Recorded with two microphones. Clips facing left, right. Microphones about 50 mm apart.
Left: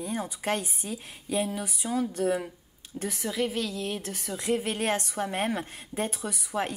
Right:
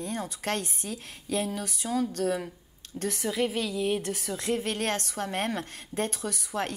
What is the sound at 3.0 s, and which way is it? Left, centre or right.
A woman's voice, centre.